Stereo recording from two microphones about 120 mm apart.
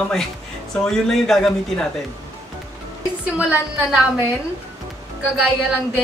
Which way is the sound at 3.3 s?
10° right (ahead or behind).